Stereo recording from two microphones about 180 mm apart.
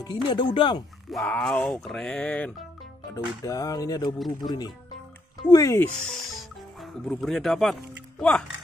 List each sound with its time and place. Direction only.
0.0 s speech: 25° left (ahead or behind)
1.1 s speech: centre (ahead or behind)
3.4 s speech: 20° left (ahead or behind)
6.0 s speech: centre (ahead or behind)